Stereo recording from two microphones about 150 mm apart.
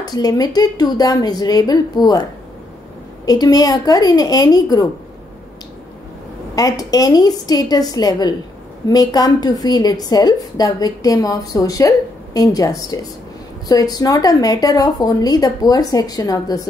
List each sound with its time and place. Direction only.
0.0 s a woman's voice: 25° left (ahead or behind)
3.3 s a woman's voice: 25° left (ahead or behind)
6.5 s a woman's voice: 25° left (ahead or behind)